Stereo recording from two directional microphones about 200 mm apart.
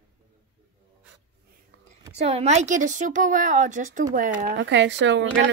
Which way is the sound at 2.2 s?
30° right (ahead or behind).